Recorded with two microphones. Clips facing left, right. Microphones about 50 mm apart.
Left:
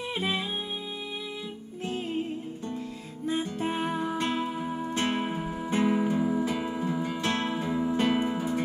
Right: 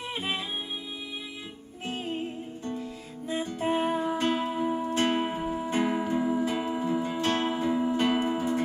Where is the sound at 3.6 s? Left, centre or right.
Right.